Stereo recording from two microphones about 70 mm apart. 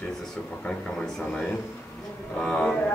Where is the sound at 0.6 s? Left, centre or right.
Centre.